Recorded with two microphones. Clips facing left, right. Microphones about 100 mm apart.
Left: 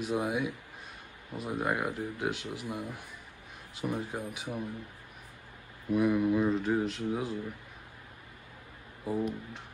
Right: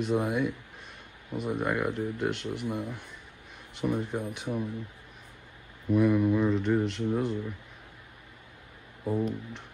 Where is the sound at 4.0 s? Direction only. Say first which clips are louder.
Right 4 dB; 5° left (ahead or behind).